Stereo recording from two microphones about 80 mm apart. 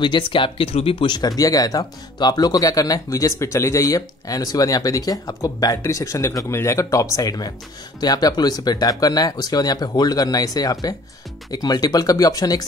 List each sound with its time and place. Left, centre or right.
0.0 s speech: left